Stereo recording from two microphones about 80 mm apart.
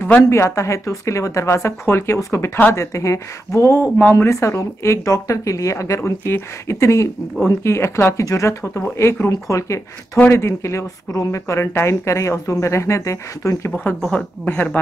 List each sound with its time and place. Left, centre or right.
0.3 s speech: left
14.0 s a woman's voice: centre